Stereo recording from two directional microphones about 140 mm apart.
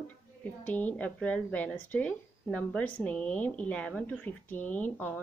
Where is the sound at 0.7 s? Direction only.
10° left (ahead or behind).